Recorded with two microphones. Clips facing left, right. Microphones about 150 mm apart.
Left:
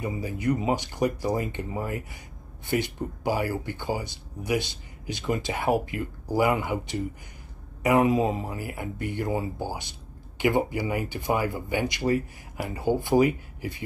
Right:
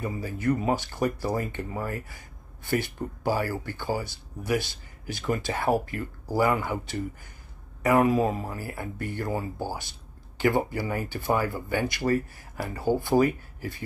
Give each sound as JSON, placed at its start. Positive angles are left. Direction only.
{"t": 0.0, "sound": "speech", "side_deg": 15}